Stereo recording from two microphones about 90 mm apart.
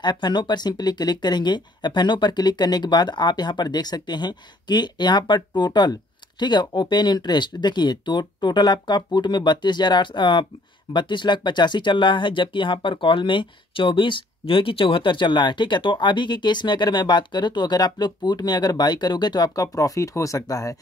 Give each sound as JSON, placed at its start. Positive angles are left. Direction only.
{"t": 0.0, "sound": "speech", "side_deg": 55}